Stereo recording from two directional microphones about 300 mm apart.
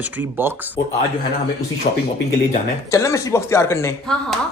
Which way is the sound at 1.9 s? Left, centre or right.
Left.